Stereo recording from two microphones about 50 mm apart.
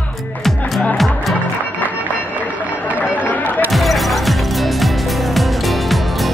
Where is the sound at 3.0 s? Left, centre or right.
Left.